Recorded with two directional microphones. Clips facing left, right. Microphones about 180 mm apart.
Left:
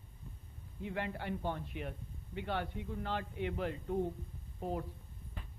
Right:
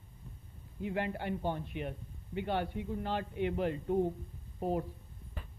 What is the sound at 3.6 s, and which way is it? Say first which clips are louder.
A woman's voice: right 4 dB; 25° right (ahead or behind).